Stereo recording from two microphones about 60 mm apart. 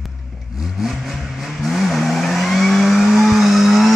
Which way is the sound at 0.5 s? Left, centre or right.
Centre.